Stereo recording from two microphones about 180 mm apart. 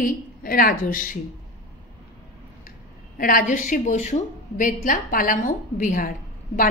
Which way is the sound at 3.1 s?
50° left (ahead or behind).